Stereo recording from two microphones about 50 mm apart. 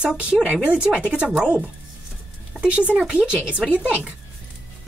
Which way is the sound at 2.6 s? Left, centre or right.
Right.